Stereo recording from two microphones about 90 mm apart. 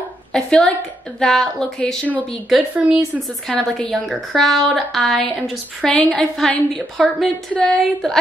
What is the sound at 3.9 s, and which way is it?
A woman's voice, centre (ahead or behind).